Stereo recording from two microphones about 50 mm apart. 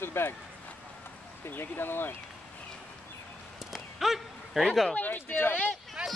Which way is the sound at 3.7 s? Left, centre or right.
Centre.